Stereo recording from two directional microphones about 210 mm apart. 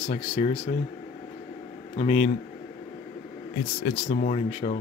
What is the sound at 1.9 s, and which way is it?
Speech, 30° left (ahead or behind).